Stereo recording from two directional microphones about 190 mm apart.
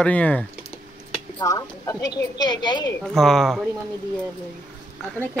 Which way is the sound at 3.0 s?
Centre (ahead or behind).